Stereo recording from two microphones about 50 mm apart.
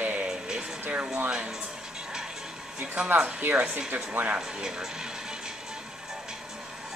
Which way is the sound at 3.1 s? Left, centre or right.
Right.